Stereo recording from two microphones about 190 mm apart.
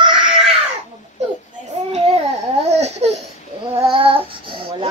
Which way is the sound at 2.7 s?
35° right (ahead or behind).